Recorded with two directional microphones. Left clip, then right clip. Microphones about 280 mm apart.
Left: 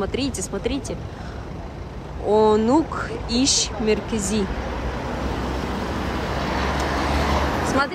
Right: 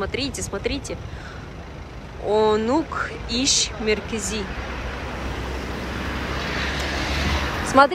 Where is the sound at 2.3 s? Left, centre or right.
Centre.